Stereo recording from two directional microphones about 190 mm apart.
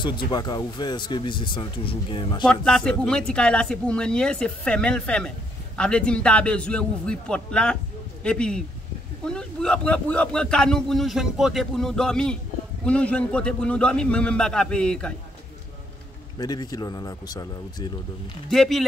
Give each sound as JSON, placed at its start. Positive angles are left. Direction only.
{"t": 0.0, "sound": "speech", "side_deg": 25}
{"t": 2.4, "sound": "speech", "side_deg": 5}
{"t": 16.3, "sound": "speech", "side_deg": 20}
{"t": 18.5, "sound": "speech", "side_deg": 0}